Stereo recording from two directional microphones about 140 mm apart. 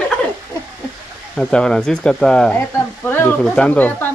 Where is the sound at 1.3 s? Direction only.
5° left (ahead or behind).